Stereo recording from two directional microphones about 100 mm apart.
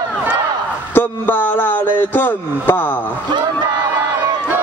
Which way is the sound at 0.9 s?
20° left (ahead or behind).